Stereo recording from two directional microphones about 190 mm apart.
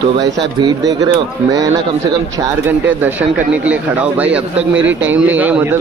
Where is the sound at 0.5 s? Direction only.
20° right (ahead or behind).